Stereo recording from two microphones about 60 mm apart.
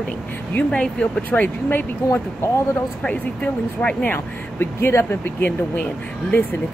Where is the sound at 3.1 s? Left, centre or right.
Left.